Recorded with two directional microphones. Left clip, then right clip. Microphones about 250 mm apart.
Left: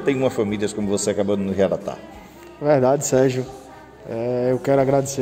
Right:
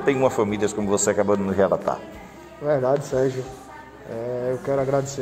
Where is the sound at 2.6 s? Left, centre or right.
Left.